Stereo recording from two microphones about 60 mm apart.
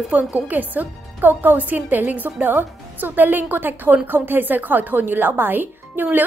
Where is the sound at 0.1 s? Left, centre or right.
Right.